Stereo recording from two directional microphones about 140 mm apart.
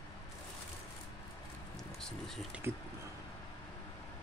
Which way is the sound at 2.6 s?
15° right (ahead or behind).